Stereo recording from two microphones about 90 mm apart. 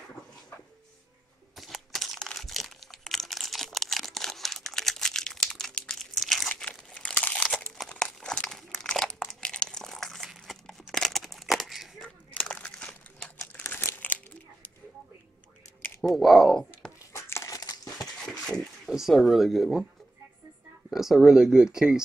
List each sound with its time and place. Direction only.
1.6 s crumpling: centre (ahead or behind)
6.5 s crumpling: 10° left (ahead or behind)
8.0 s a sound: 10° left (ahead or behind)
8.9 s crunch: 5° left (ahead or behind)
12.0 s a sound: 10° left (ahead or behind)
13.5 s crumpling: 25° left (ahead or behind)
16.0 s speech: centre (ahead or behind)
17.1 s crumpling: 30° left (ahead or behind)
17.6 s crumpling: 45° left (ahead or behind)
18.9 s speech: centre (ahead or behind)
20.9 s speech: 5° right (ahead or behind)